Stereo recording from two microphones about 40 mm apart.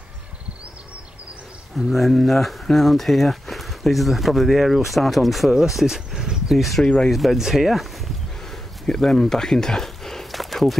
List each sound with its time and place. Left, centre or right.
1.8 s speech: centre
6.5 s speech: centre
8.8 s speech: centre